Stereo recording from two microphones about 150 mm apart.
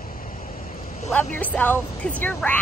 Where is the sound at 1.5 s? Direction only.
10° left (ahead or behind).